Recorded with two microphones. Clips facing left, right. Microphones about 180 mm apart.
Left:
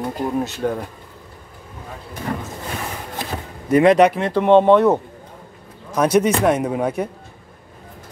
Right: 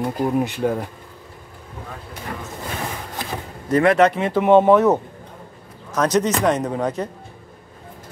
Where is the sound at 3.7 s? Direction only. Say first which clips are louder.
Left 3 dB; 15° left (ahead or behind).